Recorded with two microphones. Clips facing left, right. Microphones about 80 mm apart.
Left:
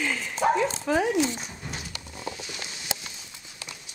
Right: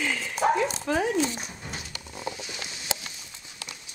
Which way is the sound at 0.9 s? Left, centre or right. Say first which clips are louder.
Left 2 dB; centre.